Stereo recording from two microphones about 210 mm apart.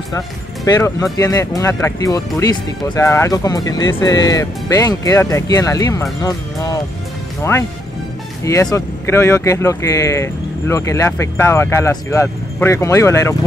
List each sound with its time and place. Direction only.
0.7 s speech: 15° left (ahead or behind)
8.5 s speech: 15° left (ahead or behind)